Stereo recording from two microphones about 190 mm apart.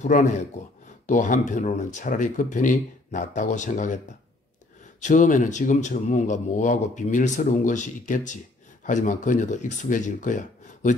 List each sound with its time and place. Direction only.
0.0 s speech: 40° left (ahead or behind)
5.0 s speech: 40° left (ahead or behind)